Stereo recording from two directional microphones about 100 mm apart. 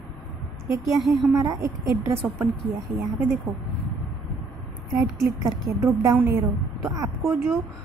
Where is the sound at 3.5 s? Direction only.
20° right (ahead or behind).